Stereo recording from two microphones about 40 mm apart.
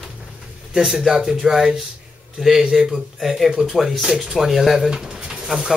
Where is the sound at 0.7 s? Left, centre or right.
Centre.